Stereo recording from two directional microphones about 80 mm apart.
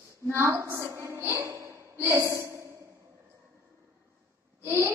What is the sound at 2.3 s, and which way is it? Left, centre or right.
Sigh, right.